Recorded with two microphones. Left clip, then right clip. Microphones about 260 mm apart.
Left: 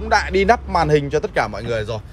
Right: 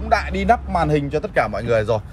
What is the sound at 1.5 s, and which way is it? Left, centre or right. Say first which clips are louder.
Speech: right 5 dB; centre.